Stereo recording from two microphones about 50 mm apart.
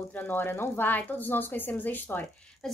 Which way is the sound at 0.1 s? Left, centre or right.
Left.